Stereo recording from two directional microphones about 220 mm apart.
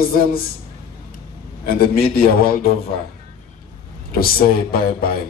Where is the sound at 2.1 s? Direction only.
40° left (ahead or behind).